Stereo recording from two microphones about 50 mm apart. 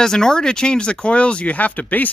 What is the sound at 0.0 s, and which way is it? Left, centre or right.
Speech, centre.